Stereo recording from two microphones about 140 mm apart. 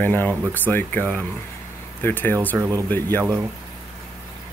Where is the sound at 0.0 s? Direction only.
15° left (ahead or behind).